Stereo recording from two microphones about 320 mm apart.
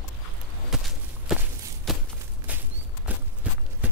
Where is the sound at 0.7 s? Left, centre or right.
Centre.